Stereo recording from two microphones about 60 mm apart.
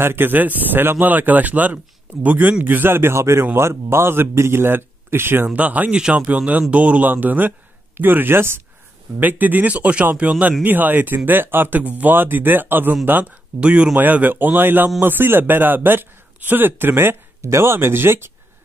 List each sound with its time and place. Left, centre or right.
0.0 s speech: right
5.5 s speech: right
9.2 s speech: right
10.6 s speech: right
13.6 s speech: centre
13.9 s speech: right
17.4 s speech: right